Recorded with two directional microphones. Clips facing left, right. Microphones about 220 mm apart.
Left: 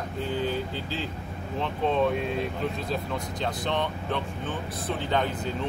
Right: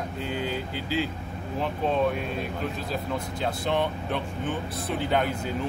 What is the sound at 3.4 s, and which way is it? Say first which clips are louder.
Speech: right 2 dB; 10° right (ahead or behind).